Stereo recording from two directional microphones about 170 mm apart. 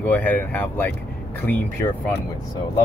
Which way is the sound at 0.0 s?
10° left (ahead or behind).